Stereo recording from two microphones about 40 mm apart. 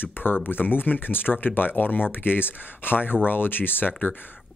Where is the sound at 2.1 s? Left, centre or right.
Left.